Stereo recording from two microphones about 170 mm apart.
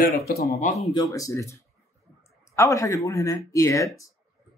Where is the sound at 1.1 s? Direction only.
20° left (ahead or behind).